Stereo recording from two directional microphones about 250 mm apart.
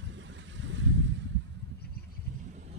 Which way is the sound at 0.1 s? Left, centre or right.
Right.